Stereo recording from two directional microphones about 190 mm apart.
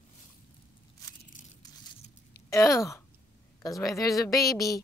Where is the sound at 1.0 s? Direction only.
20° left (ahead or behind).